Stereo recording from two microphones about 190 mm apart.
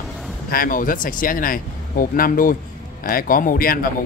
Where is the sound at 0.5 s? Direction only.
45° left (ahead or behind).